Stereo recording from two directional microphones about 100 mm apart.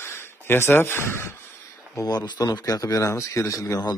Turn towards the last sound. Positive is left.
turn(degrees=35)  # may be behind; listen again after turning